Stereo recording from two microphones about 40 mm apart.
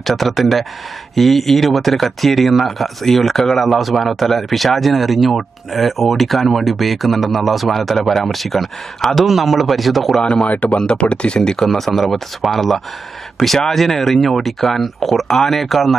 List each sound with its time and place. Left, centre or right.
0.0 s speech: centre
10.2 s speech: left
10.5 s speech: left
10.9 s speech: left
11.6 s speech: centre